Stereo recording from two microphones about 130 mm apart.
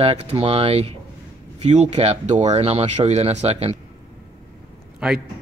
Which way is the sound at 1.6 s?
60° right (ahead or behind).